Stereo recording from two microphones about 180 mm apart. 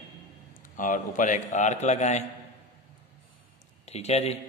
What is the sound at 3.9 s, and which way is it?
Speech, 35° left (ahead or behind).